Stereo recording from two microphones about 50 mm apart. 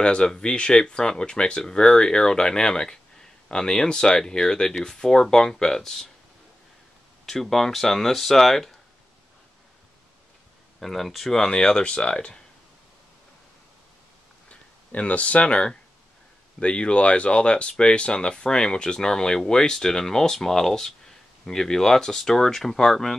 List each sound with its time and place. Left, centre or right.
0.0 s speech: left
7.2 s speech: centre
10.8 s speech: centre
11.5 s speech: centre
14.5 s speech: left; by 23.1 s centre